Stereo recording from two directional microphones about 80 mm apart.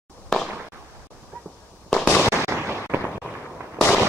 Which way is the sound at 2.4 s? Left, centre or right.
Right.